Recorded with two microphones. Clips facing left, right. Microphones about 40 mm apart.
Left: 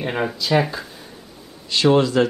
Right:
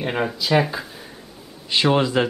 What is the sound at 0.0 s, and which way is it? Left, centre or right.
Speech, centre.